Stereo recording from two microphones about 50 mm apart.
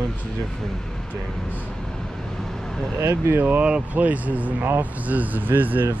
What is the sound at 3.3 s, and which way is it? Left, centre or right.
Speech, right.